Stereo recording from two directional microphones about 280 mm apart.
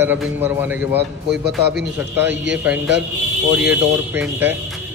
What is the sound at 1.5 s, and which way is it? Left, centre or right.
Speech, right.